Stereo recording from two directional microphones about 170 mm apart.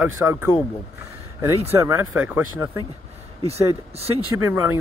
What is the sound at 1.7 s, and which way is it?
Speech, 15° right (ahead or behind).